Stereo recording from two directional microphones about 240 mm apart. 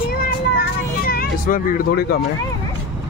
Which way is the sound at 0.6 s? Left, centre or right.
Left.